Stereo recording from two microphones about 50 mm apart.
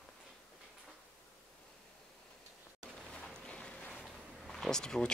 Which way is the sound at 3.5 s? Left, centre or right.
Left.